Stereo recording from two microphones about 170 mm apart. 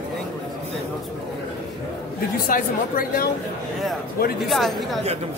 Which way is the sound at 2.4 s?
55° left (ahead or behind).